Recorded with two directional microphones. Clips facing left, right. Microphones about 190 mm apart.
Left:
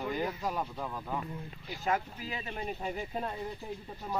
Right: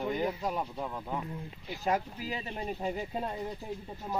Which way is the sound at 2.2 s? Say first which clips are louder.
Right 2 dB; 35° right (ahead or behind).